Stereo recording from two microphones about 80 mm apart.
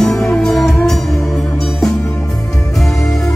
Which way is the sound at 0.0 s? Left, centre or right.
Centre.